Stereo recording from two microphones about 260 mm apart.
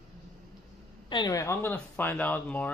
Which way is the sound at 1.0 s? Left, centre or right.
Centre.